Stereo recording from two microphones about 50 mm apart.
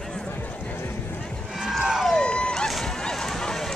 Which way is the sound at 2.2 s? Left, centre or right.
Centre.